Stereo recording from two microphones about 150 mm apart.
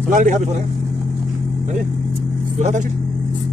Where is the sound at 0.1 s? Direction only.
60° right (ahead or behind).